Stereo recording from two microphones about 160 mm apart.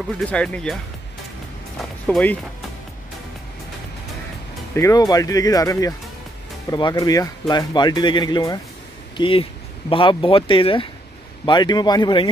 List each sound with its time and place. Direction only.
0.3 s speech: 5° left (ahead or behind)
1.8 s music: 5° left (ahead or behind)
4.7 s speech: 20° left (ahead or behind)